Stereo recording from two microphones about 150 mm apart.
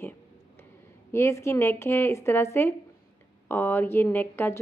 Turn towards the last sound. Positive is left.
turn(degrees=15)  # may be behind; listen again after turning